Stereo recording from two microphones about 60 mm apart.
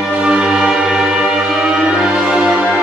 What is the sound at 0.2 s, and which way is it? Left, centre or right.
Music, centre.